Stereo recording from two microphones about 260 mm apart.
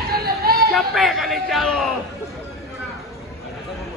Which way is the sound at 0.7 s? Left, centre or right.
Centre.